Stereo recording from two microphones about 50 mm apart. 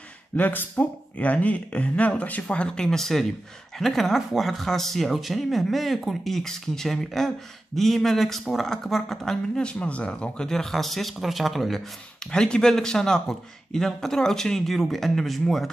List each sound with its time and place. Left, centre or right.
0.4 s speech: left
2.4 s speech: centre
10.5 s speech: centre
12.2 s speech: centre